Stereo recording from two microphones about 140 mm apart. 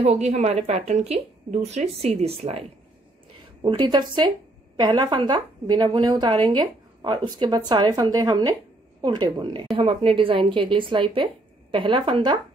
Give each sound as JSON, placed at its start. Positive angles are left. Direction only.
{"t": 0.0, "sound": "speech", "side_deg": -50}
{"t": 3.6, "sound": "a woman's voice", "side_deg": -35}